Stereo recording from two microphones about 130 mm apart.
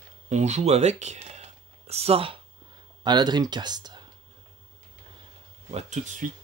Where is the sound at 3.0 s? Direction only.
35° right (ahead or behind).